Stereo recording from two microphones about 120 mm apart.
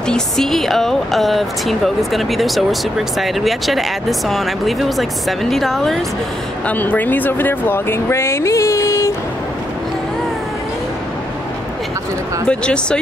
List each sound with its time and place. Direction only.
0.0 s speech: 5° left (ahead or behind)
6.7 s speech: 15° left (ahead or behind)
12.4 s speech: 10° left (ahead or behind)